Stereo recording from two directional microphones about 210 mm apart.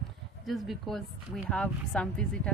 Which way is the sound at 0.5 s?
Centre (ahead or behind).